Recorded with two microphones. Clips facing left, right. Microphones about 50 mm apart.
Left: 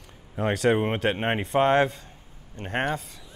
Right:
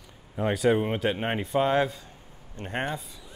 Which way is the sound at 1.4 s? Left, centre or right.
Left.